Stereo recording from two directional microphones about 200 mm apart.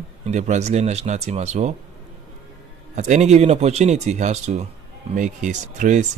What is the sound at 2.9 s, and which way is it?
Speech, 35° right (ahead or behind).